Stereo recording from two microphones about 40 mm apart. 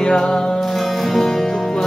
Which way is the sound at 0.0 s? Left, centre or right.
Left.